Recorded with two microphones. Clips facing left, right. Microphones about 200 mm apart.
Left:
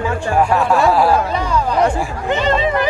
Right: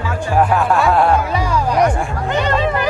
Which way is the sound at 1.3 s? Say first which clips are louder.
Even; 10° right (ahead or behind).